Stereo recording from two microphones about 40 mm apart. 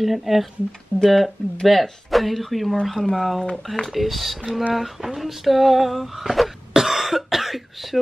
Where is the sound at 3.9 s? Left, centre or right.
Centre.